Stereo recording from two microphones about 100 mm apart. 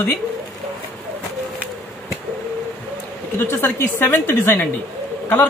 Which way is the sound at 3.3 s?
20° left (ahead or behind).